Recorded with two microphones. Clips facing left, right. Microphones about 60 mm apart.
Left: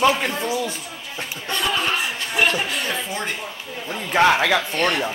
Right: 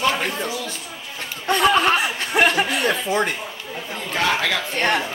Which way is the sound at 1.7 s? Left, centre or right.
Right.